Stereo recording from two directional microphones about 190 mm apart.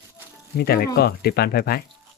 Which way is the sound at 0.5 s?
55° left (ahead or behind).